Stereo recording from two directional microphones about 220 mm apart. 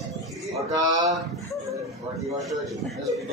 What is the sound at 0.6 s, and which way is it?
Speech, 20° right (ahead or behind).